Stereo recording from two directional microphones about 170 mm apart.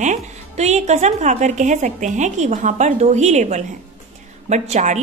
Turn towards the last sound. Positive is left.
turn(degrees=-45)  # may be behind; listen again after turning